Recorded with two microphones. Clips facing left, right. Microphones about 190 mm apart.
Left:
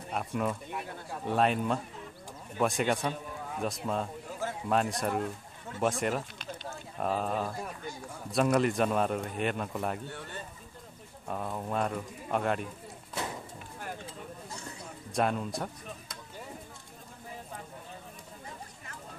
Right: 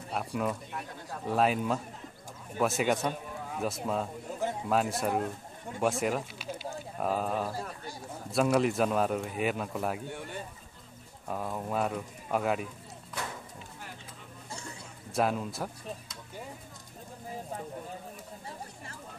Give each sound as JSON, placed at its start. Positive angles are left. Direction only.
{"t": 0.1, "sound": "speech", "side_deg": 0}
{"t": 7.5, "sound": "speech", "side_deg": -35}
{"t": 8.3, "sound": "speech", "side_deg": 0}
{"t": 10.0, "sound": "speech", "side_deg": -15}
{"t": 11.2, "sound": "speech", "side_deg": 0}
{"t": 15.1, "sound": "speech", "side_deg": -5}